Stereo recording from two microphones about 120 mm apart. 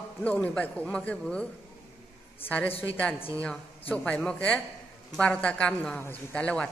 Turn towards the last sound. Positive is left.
turn(degrees=10)  # may be behind; listen again after turning